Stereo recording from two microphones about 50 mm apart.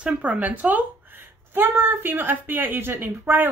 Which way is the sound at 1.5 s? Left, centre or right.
Right.